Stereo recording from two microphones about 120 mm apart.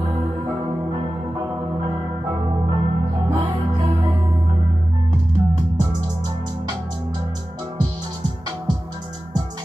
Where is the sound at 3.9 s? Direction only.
35° right (ahead or behind).